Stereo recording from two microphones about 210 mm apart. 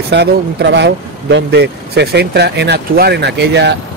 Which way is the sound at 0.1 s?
55° right (ahead or behind).